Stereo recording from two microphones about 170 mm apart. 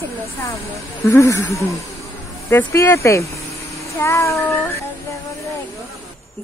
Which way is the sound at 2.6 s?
15° left (ahead or behind).